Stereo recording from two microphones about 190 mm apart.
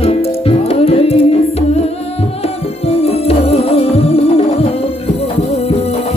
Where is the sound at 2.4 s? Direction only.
30° left (ahead or behind).